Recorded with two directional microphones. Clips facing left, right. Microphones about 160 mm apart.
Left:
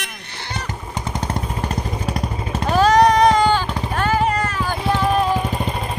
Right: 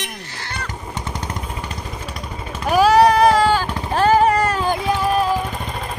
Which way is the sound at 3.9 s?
35° right (ahead or behind).